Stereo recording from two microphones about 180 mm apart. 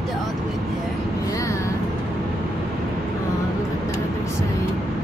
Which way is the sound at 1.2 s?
20° left (ahead or behind).